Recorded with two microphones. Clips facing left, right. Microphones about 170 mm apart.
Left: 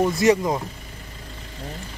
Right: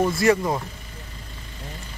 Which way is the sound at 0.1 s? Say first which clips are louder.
Left 1 dB; 15° left (ahead or behind).